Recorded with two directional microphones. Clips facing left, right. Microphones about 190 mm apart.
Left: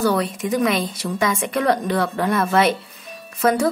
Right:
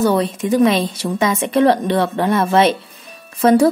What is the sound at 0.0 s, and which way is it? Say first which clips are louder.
A woman's voice: right 4 dB; 25° right (ahead or behind).